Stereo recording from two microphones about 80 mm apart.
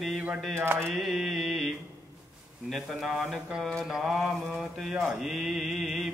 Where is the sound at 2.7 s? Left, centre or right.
Centre.